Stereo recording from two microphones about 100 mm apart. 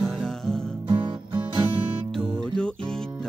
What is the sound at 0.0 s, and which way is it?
Music, 5° left (ahead or behind).